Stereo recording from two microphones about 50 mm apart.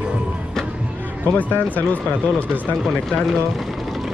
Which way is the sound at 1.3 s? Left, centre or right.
Left.